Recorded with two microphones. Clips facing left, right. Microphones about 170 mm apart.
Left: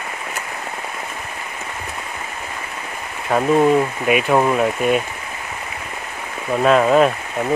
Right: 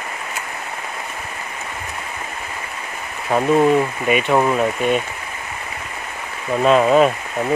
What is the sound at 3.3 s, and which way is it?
Speech, centre (ahead or behind).